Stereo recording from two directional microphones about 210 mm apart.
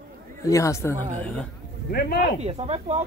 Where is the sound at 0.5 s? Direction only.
15° left (ahead or behind).